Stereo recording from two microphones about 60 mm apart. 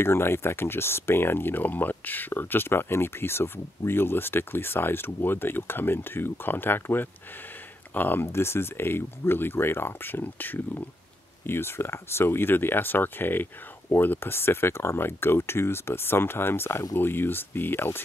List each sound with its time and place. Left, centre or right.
0.0 s speech: left
8.3 s speech: left